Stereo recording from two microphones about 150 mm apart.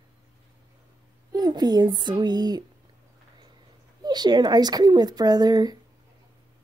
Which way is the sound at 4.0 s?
30° right (ahead or behind).